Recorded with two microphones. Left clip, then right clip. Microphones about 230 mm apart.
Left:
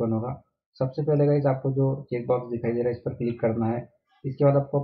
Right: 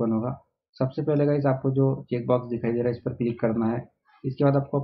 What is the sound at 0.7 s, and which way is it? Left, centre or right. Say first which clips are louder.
Speech: even; right.